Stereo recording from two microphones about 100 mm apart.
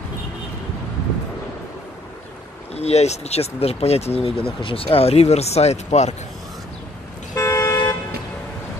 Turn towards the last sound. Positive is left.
turn(degrees=30)  # may be behind; listen again after turning